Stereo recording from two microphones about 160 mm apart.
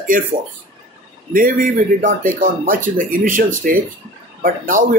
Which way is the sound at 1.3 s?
60° right (ahead or behind).